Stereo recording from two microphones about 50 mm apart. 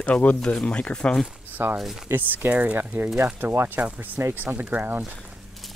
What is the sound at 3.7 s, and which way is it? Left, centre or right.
Speech, right.